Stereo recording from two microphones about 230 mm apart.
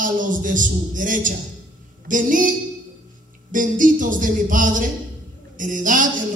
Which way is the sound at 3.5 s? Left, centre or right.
Right.